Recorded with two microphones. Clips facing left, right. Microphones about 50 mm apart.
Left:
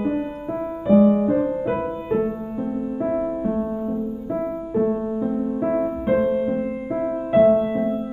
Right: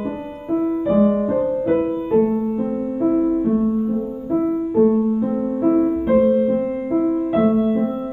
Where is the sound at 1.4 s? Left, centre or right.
Centre.